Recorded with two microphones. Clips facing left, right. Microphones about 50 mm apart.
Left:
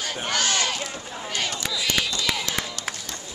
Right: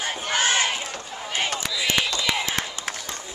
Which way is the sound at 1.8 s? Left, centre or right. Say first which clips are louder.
Right 2 dB; right.